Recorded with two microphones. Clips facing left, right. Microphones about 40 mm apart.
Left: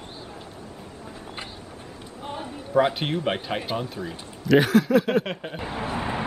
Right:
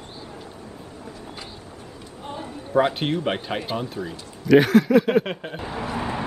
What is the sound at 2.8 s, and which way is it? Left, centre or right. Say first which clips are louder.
Speech: right 1 dB; centre.